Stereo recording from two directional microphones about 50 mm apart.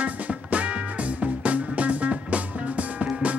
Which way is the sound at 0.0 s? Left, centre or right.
Right.